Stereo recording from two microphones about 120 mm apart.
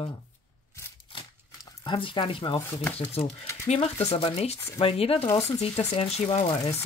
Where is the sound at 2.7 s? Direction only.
15° left (ahead or behind).